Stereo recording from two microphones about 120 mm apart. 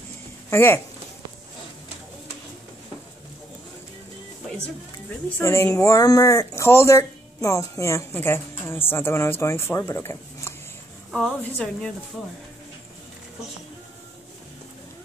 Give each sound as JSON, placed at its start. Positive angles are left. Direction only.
{"t": 0.5, "sound": "speech", "side_deg": 20}
{"t": 5.4, "sound": "speech", "side_deg": 25}
{"t": 11.1, "sound": "a woman's voice", "side_deg": 0}